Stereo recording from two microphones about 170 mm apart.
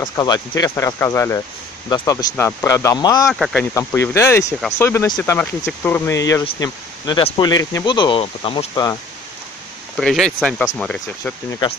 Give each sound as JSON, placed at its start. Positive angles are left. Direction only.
{"t": 0.0, "sound": "speech", "side_deg": 25}
{"t": 3.3, "sound": "speech", "side_deg": 0}
{"t": 3.7, "sound": "speech", "side_deg": 15}
{"t": 9.9, "sound": "speech", "side_deg": 0}